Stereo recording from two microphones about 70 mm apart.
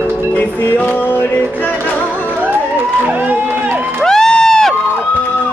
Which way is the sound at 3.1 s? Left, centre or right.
Right.